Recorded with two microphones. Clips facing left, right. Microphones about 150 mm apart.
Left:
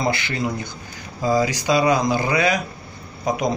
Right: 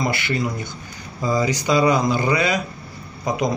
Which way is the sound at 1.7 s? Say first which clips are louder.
Right 1 dB; 15° left (ahead or behind).